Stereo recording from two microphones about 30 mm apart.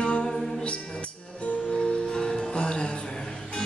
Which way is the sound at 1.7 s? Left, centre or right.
Left.